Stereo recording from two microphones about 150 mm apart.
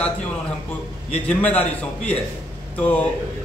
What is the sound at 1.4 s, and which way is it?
A man's voice, 10° left (ahead or behind).